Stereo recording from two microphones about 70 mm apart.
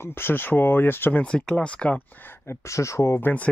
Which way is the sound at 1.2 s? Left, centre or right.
Centre.